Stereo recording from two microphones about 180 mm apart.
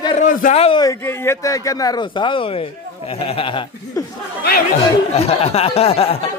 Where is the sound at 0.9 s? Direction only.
15° left (ahead or behind).